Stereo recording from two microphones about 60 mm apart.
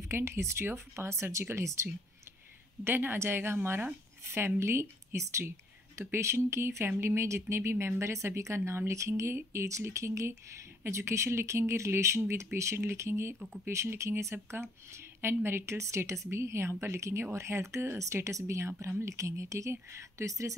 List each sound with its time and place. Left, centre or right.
0.1 s speech: right
2.8 s speech: right